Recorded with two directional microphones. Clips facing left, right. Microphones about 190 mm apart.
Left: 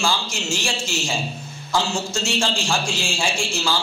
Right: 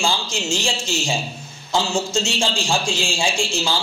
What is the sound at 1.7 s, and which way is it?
A man's voice, 20° right (ahead or behind).